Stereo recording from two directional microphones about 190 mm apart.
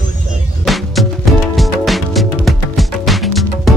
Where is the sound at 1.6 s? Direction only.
Centre (ahead or behind).